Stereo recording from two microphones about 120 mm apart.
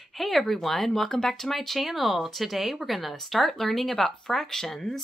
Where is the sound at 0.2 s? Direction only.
Centre (ahead or behind).